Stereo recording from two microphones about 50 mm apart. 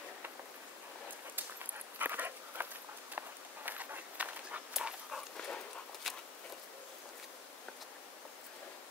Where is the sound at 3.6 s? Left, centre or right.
Right.